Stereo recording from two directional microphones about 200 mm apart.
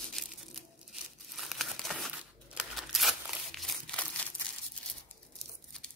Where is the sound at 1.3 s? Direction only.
Centre (ahead or behind).